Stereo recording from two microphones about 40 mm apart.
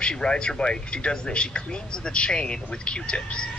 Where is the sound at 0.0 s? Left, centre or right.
Left.